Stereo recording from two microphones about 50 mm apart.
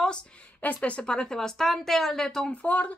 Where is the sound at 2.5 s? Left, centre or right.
Left.